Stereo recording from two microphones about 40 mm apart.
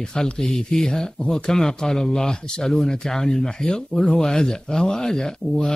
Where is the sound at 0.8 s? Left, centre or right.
Centre.